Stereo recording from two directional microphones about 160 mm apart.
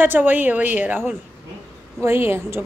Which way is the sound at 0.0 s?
10° right (ahead or behind).